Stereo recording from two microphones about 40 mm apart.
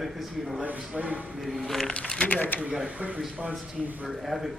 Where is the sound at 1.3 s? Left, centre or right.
Centre.